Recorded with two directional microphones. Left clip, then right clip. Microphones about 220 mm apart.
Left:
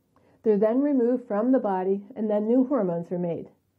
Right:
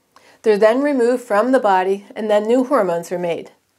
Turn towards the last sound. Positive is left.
turn(degrees=-10)  # may be behind; listen again after turning